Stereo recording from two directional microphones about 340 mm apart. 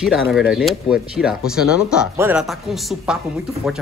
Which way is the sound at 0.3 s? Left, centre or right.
Centre.